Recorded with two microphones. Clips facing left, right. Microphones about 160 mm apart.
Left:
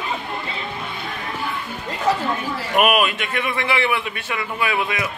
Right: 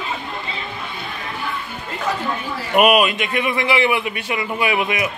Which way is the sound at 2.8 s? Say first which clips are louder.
Right 3 dB; 15° right (ahead or behind).